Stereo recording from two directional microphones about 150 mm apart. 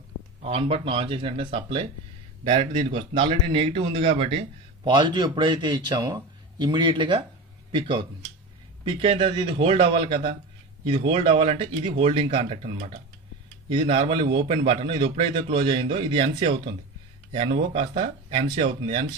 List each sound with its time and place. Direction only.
0.4 s speech: 40° right (ahead or behind)